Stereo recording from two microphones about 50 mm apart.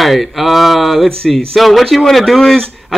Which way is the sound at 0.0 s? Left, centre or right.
Centre.